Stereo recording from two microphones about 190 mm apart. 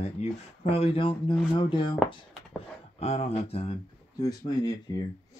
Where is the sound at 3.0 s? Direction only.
35° left (ahead or behind).